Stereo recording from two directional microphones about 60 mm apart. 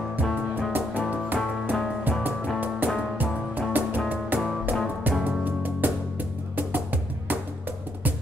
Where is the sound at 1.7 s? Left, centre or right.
Centre.